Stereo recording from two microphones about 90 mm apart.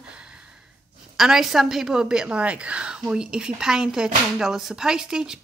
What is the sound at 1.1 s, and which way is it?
A woman's voice, 5° right (ahead or behind).